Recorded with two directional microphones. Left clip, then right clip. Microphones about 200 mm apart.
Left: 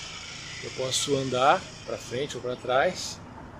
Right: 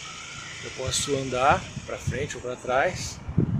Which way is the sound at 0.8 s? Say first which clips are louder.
Even; centre (ahead or behind).